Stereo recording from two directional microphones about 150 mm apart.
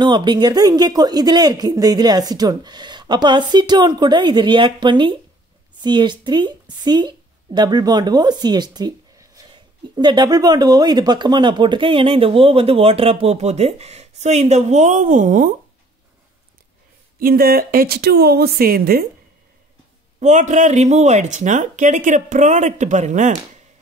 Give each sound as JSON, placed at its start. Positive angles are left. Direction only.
{"t": 0.0, "sound": "a woman's voice", "side_deg": -30}
{"t": 17.2, "sound": "speech", "side_deg": -85}
{"t": 20.2, "sound": "speech", "side_deg": -55}